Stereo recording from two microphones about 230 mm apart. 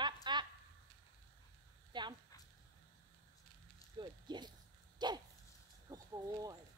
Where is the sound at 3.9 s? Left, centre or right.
Centre.